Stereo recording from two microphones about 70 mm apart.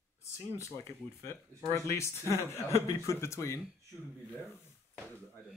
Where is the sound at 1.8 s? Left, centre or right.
Left.